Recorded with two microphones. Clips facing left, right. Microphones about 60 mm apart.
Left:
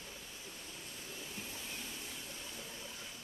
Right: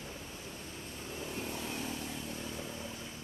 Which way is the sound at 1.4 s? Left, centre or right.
Right.